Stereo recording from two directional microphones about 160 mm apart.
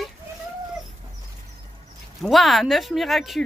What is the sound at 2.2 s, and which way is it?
Speech, centre (ahead or behind).